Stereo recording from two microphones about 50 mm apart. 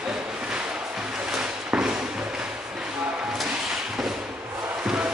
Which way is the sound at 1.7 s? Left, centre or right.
Right.